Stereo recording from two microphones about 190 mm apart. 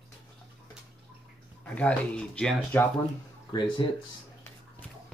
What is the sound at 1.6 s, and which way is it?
Speech, 5° left (ahead or behind).